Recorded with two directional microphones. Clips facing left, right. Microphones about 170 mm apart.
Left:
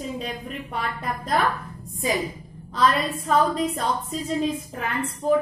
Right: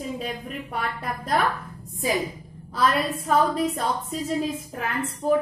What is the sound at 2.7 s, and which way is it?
A woman's voice, 5° right (ahead or behind).